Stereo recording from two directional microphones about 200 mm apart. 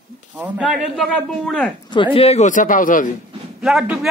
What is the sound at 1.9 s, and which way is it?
Speech, 25° left (ahead or behind).